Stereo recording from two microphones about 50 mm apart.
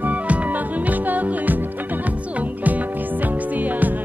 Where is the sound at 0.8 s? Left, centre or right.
Right.